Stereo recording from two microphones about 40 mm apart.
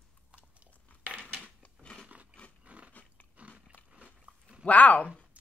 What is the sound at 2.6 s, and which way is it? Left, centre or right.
Biting, right.